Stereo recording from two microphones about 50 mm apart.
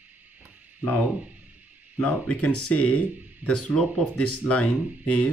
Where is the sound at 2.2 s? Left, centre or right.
Left.